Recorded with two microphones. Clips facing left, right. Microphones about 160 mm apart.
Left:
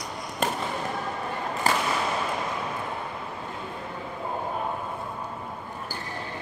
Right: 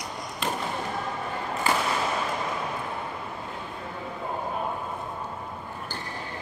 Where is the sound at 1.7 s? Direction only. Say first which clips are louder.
Left 1 dB; 40° left (ahead or behind).